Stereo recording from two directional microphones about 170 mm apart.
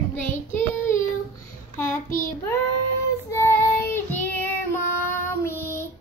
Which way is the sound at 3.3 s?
15° left (ahead or behind).